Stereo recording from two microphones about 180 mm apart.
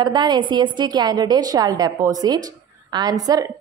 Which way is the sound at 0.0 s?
25° right (ahead or behind).